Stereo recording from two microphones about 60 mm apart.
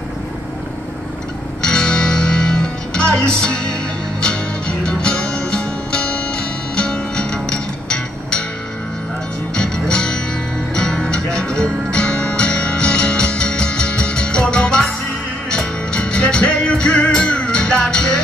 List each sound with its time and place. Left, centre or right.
1.6 s music: centre
9.5 s music: centre